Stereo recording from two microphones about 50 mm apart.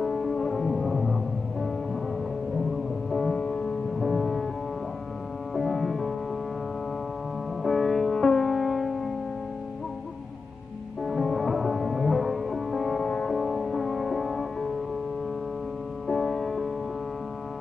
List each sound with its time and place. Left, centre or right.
0.0 s music: centre
3.1 s music: centre
3.3 s music: left
4.0 s music: centre
5.5 s music: centre
7.6 s music: centre
11.1 s music: centre
13.0 s music: centre
13.3 s music: centre
16.1 s music: centre